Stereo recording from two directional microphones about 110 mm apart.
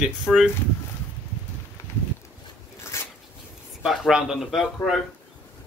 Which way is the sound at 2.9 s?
25° left (ahead or behind).